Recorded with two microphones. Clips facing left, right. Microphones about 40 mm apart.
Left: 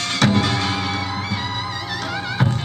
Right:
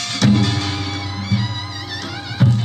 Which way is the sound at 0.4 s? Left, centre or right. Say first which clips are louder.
Left 1 dB; centre.